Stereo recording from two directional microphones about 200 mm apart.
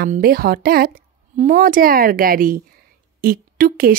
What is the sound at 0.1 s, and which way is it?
A woman's voice, 50° right (ahead or behind).